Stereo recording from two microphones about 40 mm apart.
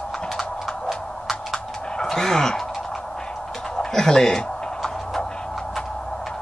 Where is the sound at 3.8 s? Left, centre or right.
Centre.